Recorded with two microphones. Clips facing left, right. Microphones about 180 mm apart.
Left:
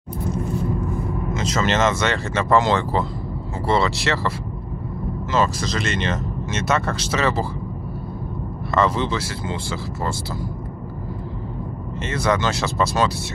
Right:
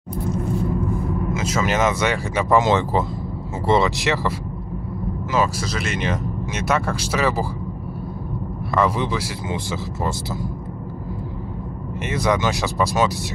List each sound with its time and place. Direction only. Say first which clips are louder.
1.3 s speech: left 1 dB; 5° right (ahead or behind)
5.3 s speech: left 1 dB; 5° right (ahead or behind)
8.7 s speech: even; 10° right (ahead or behind)
12.0 s speech: right 1 dB; 15° right (ahead or behind)